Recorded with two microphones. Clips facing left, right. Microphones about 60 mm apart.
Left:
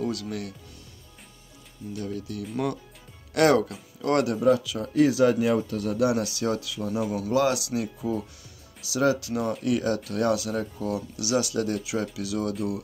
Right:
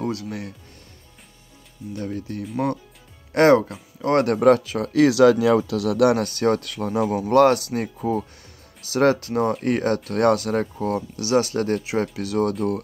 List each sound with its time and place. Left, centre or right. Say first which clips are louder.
0.0 s speech: right 2 dB; right
2.0 s speech: right 3 dB; right
4.3 s speech: right 9 dB; right
4.7 s speech: right 5 dB; right